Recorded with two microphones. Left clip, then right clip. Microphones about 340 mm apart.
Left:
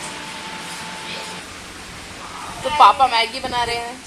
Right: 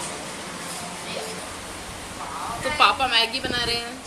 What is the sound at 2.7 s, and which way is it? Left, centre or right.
Speech, centre.